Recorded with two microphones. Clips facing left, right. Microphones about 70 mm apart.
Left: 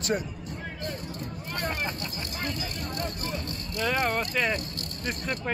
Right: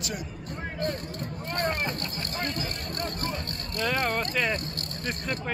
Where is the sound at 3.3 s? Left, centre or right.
Centre.